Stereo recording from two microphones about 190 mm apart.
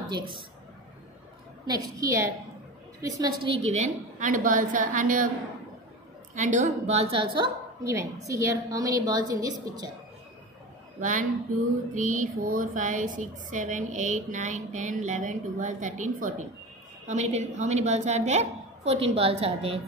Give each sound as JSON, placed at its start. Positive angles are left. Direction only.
{"t": 1.7, "sound": "a woman's voice", "side_deg": -20}
{"t": 6.3, "sound": "a woman's voice", "side_deg": -40}
{"t": 7.3, "sound": "a woman's voice", "side_deg": -15}
{"t": 11.0, "sound": "a woman's voice", "side_deg": -40}